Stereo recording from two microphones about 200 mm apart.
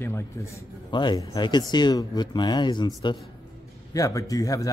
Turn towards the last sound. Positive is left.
turn(degrees=15)  # may be behind; listen again after turning